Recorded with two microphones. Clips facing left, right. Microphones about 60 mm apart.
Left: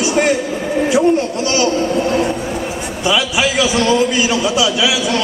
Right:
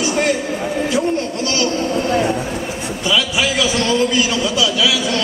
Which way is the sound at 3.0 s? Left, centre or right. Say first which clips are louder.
Left 2 dB; centre.